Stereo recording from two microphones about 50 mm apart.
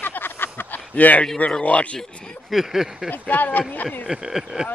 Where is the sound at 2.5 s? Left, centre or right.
Centre.